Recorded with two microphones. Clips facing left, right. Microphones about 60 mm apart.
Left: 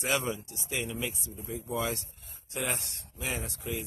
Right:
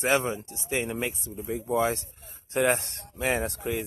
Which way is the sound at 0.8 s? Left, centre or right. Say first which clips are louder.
Right 5 dB; right.